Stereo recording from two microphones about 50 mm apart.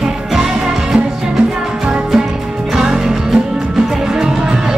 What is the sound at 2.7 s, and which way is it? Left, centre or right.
Music, centre.